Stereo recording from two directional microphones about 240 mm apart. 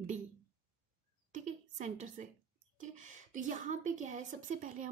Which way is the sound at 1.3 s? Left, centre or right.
Right.